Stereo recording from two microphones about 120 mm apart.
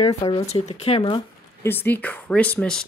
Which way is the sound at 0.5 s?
60° left (ahead or behind).